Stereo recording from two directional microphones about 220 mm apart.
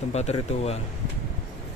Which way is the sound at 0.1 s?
30° left (ahead or behind).